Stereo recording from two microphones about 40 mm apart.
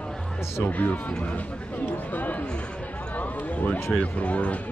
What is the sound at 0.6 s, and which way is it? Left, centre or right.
Speech, left.